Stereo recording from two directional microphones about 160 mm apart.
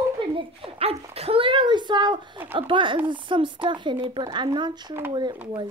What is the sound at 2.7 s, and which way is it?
A woman's voice, 30° right (ahead or behind).